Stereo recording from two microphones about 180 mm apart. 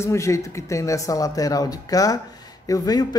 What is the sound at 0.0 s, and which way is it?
Speech, 15° left (ahead or behind).